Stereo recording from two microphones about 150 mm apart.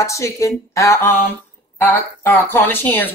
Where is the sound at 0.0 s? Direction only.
20° left (ahead or behind).